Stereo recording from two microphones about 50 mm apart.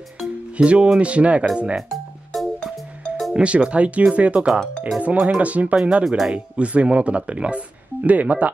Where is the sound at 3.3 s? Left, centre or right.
Right.